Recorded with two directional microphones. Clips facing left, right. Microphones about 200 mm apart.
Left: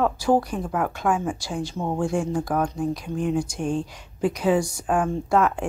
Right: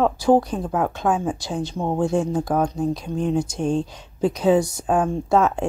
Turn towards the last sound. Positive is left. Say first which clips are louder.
# right 2 dB
turn(degrees=-25)  # may be behind; listen again after turning